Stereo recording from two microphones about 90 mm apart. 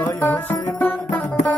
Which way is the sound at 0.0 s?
20° left (ahead or behind).